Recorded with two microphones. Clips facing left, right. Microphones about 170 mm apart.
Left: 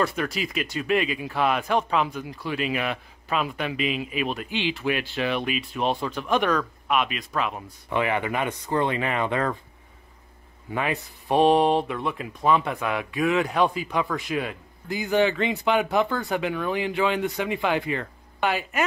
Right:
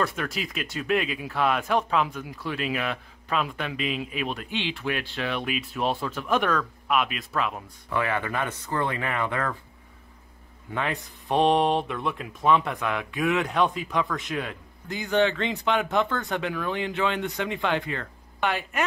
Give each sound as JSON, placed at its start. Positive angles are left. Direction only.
{"t": 0.0, "sound": "speech", "side_deg": 0}
{"t": 7.9, "sound": "speech", "side_deg": 20}
{"t": 10.7, "sound": "speech", "side_deg": 5}